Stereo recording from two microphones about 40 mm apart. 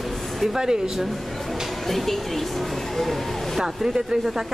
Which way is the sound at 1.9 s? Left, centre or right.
Centre.